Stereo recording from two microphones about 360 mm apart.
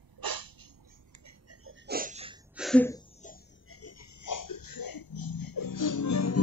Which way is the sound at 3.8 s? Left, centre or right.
Left.